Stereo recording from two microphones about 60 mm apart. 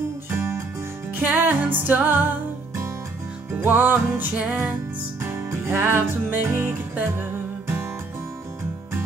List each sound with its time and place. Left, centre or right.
1.1 s music: right
3.6 s music: right
5.2 s music: right